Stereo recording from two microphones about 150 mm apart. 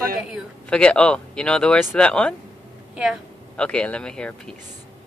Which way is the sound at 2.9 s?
5° right (ahead or behind).